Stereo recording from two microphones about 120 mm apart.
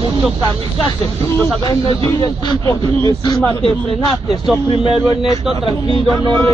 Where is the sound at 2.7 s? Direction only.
30° left (ahead or behind).